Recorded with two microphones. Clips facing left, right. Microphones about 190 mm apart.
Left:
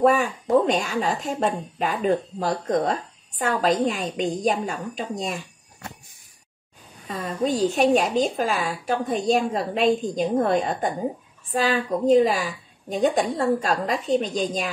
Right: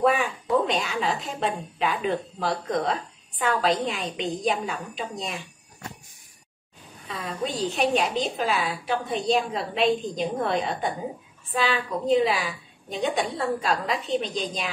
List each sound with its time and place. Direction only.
0.0 s speech: 45° left (ahead or behind)
7.1 s speech: 45° left (ahead or behind)